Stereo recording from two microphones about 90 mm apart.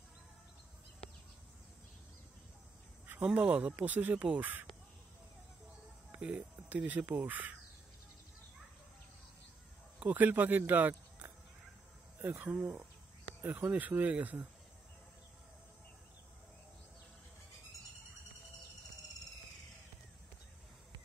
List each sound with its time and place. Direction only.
3.3 s speech: 15° right (ahead or behind)
6.1 s speech: 15° right (ahead or behind)
9.9 s speech: 20° right (ahead or behind)
10.7 s a sound: 20° right (ahead or behind)
12.2 s speech: 20° right (ahead or behind)